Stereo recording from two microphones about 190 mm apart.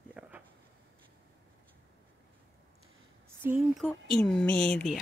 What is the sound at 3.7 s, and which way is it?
Speech, centre (ahead or behind).